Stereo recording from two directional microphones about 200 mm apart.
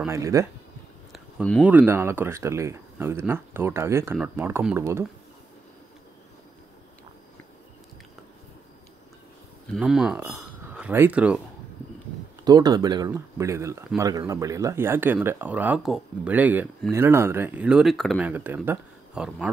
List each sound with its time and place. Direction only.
0.0 s speech: 15° right (ahead or behind)
1.1 s a sound: centre (ahead or behind)
1.7 s speech: 10° right (ahead or behind)
9.7 s speech: centre (ahead or behind)
12.4 s speech: 20° right (ahead or behind); by 19.5 s 5° right (ahead or behind)